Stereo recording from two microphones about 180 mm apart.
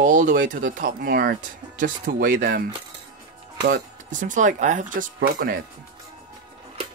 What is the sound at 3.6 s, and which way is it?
Speech, 45° right (ahead or behind).